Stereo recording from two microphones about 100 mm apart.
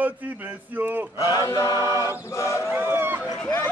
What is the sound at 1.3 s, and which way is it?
Chant, 35° left (ahead or behind).